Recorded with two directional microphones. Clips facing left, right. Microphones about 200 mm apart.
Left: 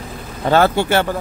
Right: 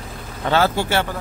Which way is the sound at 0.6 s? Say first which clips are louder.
Left 4 dB; 60° left (ahead or behind).